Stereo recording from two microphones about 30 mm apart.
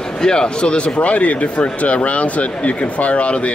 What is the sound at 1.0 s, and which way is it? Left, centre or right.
Speech, left.